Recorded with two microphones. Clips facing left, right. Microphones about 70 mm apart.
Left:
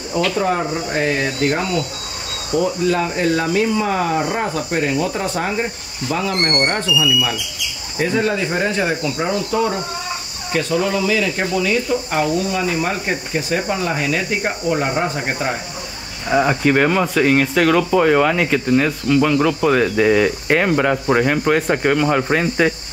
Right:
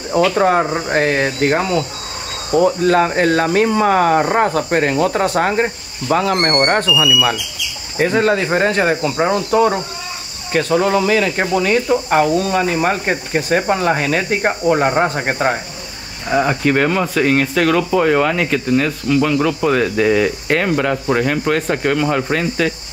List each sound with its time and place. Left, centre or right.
0.3 s speech: right
1.6 s speech: right
2.5 s speech: right
16.3 s speech: centre